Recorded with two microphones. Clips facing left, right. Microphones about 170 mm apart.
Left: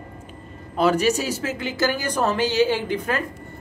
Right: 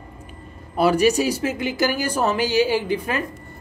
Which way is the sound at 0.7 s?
10° right (ahead or behind).